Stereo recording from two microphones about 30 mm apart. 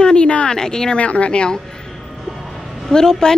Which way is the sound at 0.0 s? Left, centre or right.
Left.